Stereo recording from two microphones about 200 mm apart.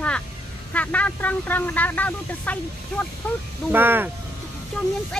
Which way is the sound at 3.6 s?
10° right (ahead or behind).